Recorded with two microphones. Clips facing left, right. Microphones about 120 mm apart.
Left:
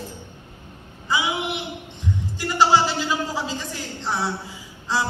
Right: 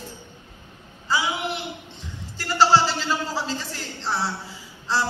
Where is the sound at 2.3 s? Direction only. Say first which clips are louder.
Even; 15° left (ahead or behind).